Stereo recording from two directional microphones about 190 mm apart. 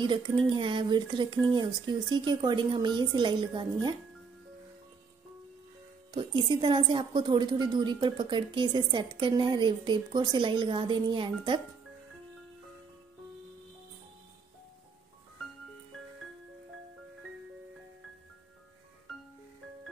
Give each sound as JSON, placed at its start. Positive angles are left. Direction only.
{"t": 0.0, "sound": "a woman's voice", "side_deg": -25}
{"t": 6.1, "sound": "a woman's voice", "side_deg": -25}